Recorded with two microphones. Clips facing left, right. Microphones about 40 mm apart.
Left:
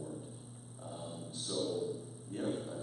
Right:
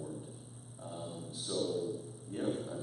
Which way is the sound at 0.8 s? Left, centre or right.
Centre.